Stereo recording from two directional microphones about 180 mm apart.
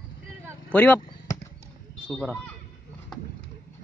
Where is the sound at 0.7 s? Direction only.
10° left (ahead or behind).